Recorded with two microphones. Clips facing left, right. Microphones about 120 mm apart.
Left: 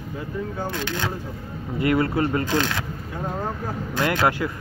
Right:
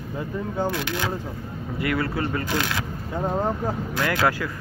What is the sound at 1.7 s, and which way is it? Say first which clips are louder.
Speech: left 5 dB; 25° left (ahead or behind).